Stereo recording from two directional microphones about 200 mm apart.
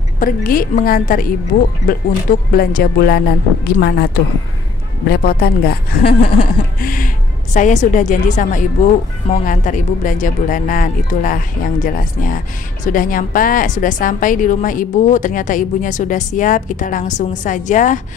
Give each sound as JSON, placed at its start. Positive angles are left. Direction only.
{"t": 0.2, "sound": "speech", "side_deg": 45}
{"t": 2.5, "sound": "a woman's voice", "side_deg": 50}